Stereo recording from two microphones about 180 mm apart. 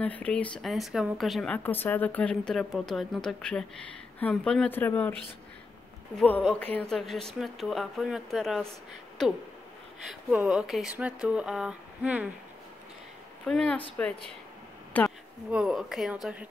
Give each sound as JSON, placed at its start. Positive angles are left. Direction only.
{"t": 0.0, "sound": "speech", "side_deg": 5}
{"t": 6.1, "sound": "speech", "side_deg": 5}
{"t": 10.0, "sound": "speech", "side_deg": 0}
{"t": 13.5, "sound": "speech", "side_deg": 5}
{"t": 14.9, "sound": "a sound", "side_deg": 10}
{"t": 15.5, "sound": "speech", "side_deg": -5}